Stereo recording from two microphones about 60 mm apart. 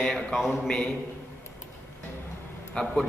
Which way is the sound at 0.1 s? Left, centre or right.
Centre.